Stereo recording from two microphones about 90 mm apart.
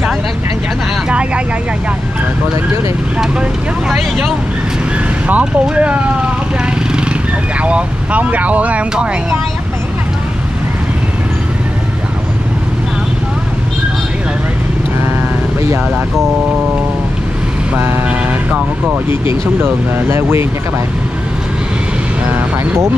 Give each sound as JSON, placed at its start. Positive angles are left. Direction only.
{"t": 1.0, "sound": "vehicle", "side_deg": -10}
{"t": 5.3, "sound": "speech", "side_deg": -15}
{"t": 7.6, "sound": "speech", "side_deg": -15}
{"t": 17.7, "sound": "speech", "side_deg": -25}
{"t": 18.5, "sound": "speech", "side_deg": -15}
{"t": 19.6, "sound": "speech", "side_deg": -25}
{"t": 22.2, "sound": "music", "side_deg": -25}